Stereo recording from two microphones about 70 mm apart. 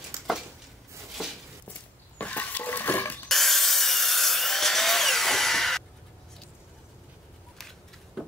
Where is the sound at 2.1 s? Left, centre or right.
Left.